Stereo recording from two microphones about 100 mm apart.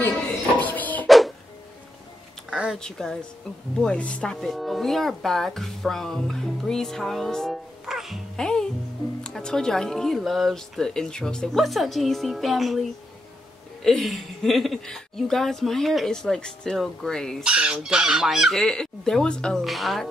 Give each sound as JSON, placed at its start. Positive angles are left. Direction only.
{"t": 0.6, "sound": "music", "side_deg": 15}
{"t": 1.0, "sound": "music", "side_deg": 0}
{"t": 2.5, "sound": "a sound", "side_deg": -10}
{"t": 2.8, "sound": "speech", "side_deg": 5}
{"t": 7.8, "sound": "music", "side_deg": 0}
{"t": 9.2, "sound": "speech", "side_deg": 5}
{"t": 13.8, "sound": "speech", "side_deg": 0}
{"t": 17.4, "sound": "speech", "side_deg": -10}